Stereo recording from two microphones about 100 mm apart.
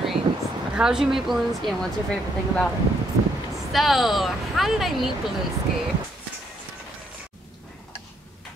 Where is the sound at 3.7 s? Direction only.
Centre (ahead or behind).